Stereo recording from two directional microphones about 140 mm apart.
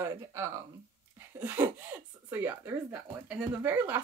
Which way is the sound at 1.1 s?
15° right (ahead or behind).